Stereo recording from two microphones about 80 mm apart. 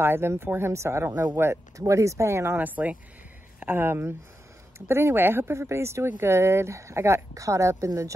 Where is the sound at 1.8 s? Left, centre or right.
Right.